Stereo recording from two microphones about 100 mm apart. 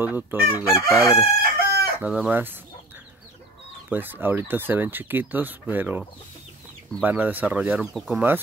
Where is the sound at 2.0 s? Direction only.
15° right (ahead or behind).